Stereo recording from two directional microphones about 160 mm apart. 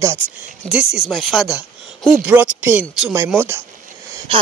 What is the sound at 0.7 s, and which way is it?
Speech, 5° right (ahead or behind).